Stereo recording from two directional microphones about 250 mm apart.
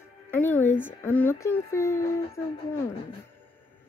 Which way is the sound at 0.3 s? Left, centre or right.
Centre.